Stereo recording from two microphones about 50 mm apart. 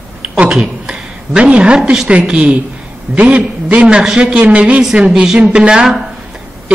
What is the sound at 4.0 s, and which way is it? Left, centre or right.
A man's voice, centre.